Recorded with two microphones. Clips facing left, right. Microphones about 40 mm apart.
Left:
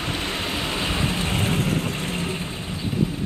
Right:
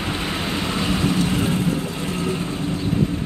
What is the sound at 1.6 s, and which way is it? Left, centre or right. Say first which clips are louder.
Vehicle: right 1 dB; left.